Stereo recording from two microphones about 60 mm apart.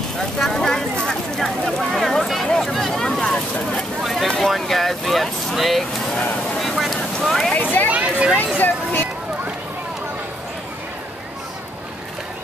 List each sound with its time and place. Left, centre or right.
0.4 s a sound: centre
4.0 s boat: centre
4.4 s speech: centre
6.6 s vehicle: centre
7.2 s speech: centre
7.9 s a sound: right
8.5 s speech: left